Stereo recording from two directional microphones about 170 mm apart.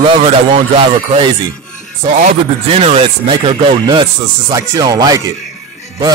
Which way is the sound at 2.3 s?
40° right (ahead or behind).